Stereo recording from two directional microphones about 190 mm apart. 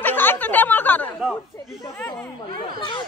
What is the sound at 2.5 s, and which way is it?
Speech, 25° left (ahead or behind).